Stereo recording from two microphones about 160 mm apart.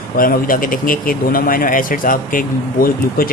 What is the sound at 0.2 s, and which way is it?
Speech, 60° left (ahead or behind).